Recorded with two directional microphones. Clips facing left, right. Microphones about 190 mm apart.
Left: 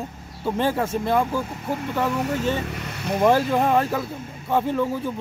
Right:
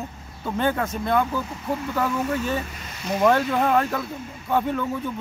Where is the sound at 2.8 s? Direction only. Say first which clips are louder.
Left 6 dB; 65° left (ahead or behind).